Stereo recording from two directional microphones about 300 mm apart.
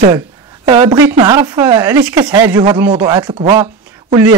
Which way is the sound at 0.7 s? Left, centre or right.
Centre.